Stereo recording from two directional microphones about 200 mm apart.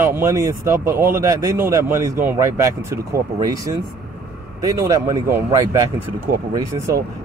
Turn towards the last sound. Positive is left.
turn(degrees=-15)  # may be behind; listen again after turning